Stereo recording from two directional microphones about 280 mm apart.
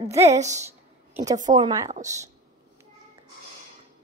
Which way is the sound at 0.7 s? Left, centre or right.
Centre.